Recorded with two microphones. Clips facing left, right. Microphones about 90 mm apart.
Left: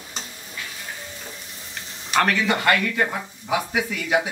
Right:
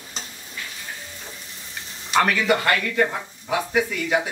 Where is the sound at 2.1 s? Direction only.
5° right (ahead or behind).